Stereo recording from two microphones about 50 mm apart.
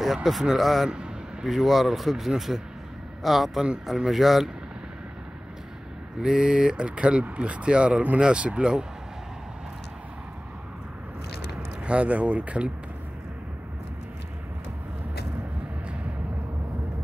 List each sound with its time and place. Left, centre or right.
0.0 s speech: centre
6.2 s speech: centre
11.8 s speech: right